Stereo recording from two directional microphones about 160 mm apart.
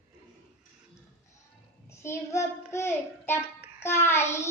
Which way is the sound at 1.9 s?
15° left (ahead or behind).